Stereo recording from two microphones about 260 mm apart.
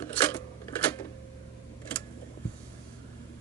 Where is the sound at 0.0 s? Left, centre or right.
Centre.